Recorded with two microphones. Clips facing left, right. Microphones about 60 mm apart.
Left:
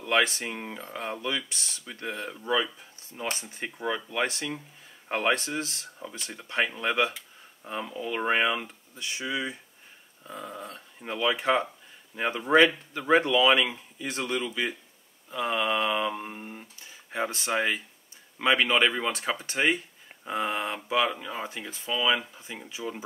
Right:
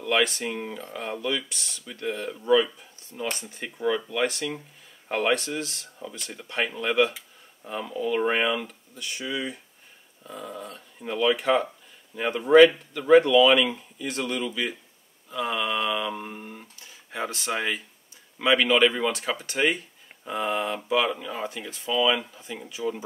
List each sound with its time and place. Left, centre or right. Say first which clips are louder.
0.1 s speech: right 1 dB; left
0.4 s speech: right 4 dB; centre
2.2 s speech: right 7 dB; centre
3.8 s speech: right 4 dB; left
13.1 s speech: right 5 dB; left
16.1 s speech: even; centre
21.1 s speech: right 3 dB; centre